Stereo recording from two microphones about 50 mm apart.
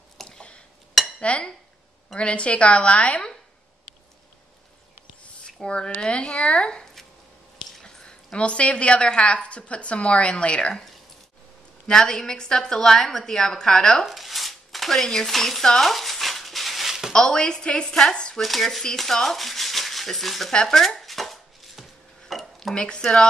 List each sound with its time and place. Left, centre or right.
0.4 s dishes: left
1.2 s a woman's voice: left
5.6 s a woman's voice: centre
11.9 s a woman's voice: centre
14.0 s speech: centre
15.9 s a sound: centre
17.1 s a woman's voice: centre
18.4 s speech: centre
20.5 s chopping: centre
22.3 s dishes: centre
22.8 s a woman's voice: centre